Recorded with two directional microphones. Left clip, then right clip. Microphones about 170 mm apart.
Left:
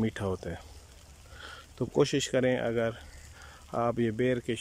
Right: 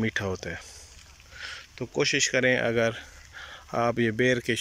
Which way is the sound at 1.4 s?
30° left (ahead or behind).